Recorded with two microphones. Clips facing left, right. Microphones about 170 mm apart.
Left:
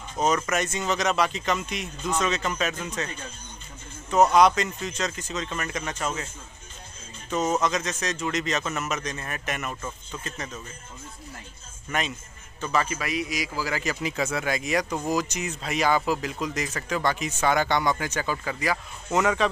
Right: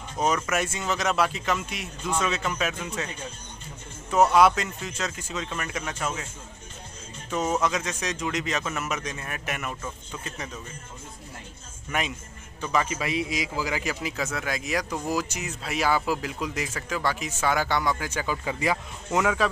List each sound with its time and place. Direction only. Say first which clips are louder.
0.4 s speech: left 1 dB; 5° right (ahead or behind)
4.1 s speech: left 1 dB; 5° right (ahead or behind)
7.2 s speech: left 1 dB; 10° right (ahead or behind)
11.9 s a man's voice: even; 10° right (ahead or behind)
14.0 s speech: left 3 dB; centre (ahead or behind); by 18.8 s 20° right (ahead or behind)
19.1 s speech: left 1 dB; 5° right (ahead or behind)